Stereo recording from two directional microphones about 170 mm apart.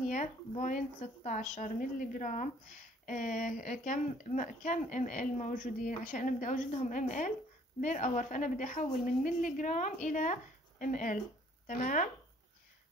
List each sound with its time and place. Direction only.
0.1 s speech: 50° left (ahead or behind)